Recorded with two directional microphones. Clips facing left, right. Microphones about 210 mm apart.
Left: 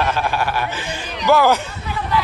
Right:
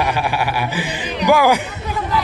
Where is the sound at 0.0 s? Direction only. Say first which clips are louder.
Right 1 dB; 15° right (ahead or behind).